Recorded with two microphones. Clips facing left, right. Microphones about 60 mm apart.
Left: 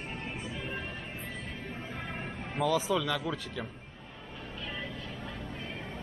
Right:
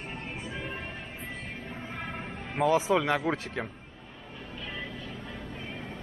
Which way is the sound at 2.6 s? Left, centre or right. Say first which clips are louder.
Right 4 dB; right.